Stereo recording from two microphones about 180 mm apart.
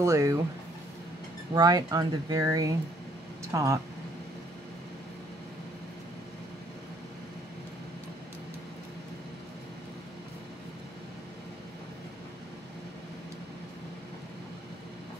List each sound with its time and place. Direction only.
0.0 s speech: 15° right (ahead or behind)
1.5 s speech: 20° right (ahead or behind)